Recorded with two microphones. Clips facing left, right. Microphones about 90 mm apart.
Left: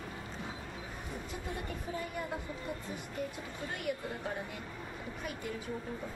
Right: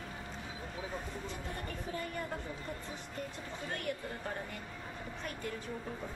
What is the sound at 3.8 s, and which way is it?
Speech, 5° left (ahead or behind).